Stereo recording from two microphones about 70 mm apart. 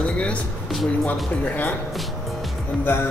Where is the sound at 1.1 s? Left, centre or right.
Left.